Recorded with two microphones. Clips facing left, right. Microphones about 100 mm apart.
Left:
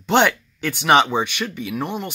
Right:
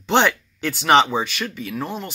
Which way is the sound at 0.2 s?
15° left (ahead or behind).